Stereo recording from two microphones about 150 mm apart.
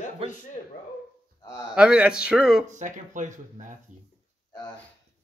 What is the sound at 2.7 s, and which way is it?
Speech, 55° right (ahead or behind).